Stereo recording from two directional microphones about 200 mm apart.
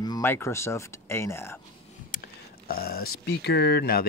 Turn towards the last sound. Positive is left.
turn(degrees=50)  # may be behind; listen again after turning